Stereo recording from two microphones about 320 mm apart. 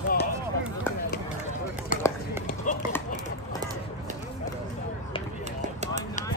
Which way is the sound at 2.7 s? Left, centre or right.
Left.